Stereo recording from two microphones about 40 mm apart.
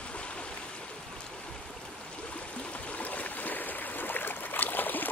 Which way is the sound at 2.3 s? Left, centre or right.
Left.